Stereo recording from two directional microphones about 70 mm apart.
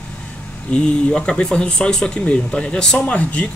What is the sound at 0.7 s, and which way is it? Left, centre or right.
Speech, centre.